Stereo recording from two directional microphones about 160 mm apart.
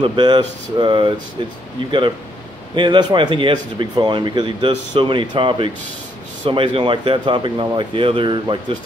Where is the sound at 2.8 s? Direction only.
30° right (ahead or behind).